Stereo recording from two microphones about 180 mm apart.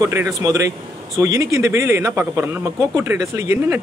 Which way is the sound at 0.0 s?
15° right (ahead or behind).